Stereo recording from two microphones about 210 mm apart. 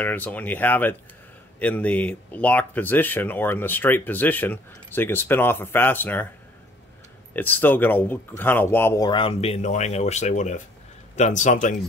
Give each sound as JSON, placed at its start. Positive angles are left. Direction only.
{"t": 0.0, "sound": "speech", "side_deg": 10}
{"t": 7.3, "sound": "speech", "side_deg": 10}